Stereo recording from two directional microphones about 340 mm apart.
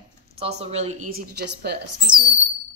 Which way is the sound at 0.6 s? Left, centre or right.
Centre.